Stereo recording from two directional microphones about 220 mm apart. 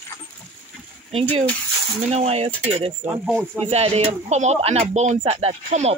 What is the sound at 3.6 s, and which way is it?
Speech, 25° right (ahead or behind).